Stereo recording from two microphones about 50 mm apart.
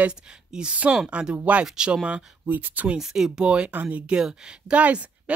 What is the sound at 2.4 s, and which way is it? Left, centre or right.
Speech, right.